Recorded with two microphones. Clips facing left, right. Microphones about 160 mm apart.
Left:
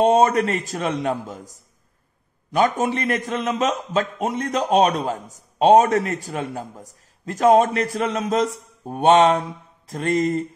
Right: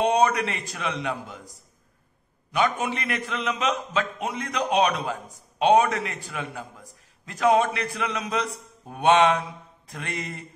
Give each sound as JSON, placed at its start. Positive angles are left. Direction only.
{"t": 0.0, "sound": "a man's voice", "side_deg": 45}
{"t": 2.5, "sound": "a man's voice", "side_deg": 40}